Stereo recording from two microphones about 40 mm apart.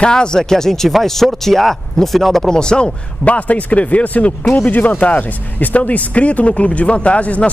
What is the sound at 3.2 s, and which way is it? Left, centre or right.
Speech, left.